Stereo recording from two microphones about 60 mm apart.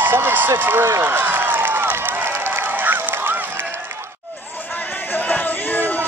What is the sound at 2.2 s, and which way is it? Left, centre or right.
Run, right.